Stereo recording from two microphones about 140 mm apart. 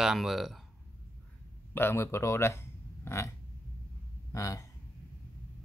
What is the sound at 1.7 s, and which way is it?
Speech, 15° left (ahead or behind).